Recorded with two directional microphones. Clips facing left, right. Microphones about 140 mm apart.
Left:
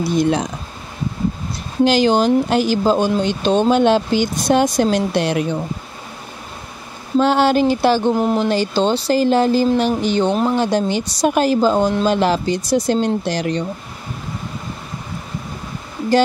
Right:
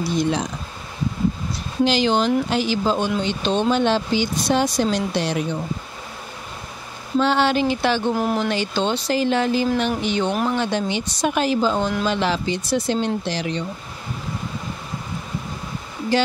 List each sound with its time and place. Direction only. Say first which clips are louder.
0.2 s speech: left 5 dB; 55° left (ahead or behind)
1.9 s speech: left 5 dB; 45° left (ahead or behind)
7.2 s speech: left 4 dB; 45° left (ahead or behind)
8.1 s speech: left 4 dB; 20° left (ahead or behind)
8.5 s speech: left 5 dB; 35° left (ahead or behind)